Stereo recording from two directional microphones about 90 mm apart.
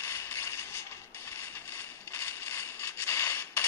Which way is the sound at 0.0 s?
30° left (ahead or behind).